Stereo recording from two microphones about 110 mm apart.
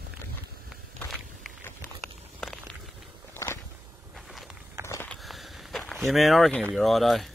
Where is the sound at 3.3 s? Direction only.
25° left (ahead or behind).